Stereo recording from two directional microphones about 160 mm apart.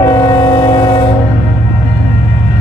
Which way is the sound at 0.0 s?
25° left (ahead or behind).